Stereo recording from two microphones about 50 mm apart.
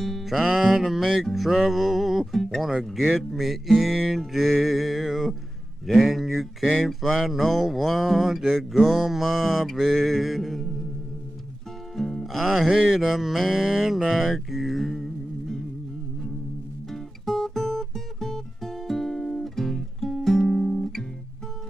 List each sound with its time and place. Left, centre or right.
0.2 s music: centre
11.9 s music: centre
13.0 s a sound: centre
16.9 s music: centre